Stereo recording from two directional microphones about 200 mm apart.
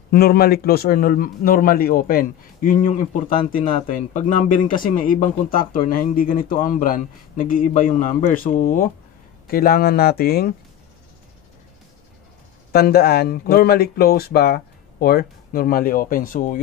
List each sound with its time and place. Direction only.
0.1 s a man's voice: 50° left (ahead or behind)
12.7 s a man's voice: 50° left (ahead or behind)